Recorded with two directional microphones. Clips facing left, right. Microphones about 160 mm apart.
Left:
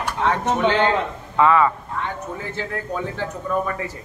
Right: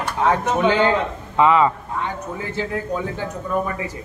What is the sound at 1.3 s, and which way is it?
Speech, 20° right (ahead or behind).